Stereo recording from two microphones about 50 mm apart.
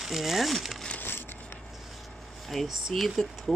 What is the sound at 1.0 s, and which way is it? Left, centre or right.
Crushing, left.